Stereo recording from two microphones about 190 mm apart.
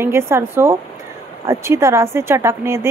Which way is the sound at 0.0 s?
15° right (ahead or behind).